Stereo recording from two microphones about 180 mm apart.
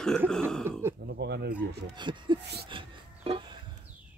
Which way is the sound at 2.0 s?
25° right (ahead or behind).